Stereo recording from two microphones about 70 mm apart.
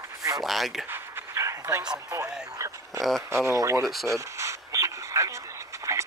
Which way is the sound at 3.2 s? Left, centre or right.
Right.